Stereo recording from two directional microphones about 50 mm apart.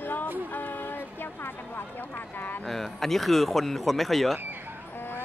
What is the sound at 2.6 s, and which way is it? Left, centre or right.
Speech, centre.